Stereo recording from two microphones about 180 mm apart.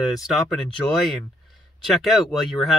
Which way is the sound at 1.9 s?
Centre (ahead or behind).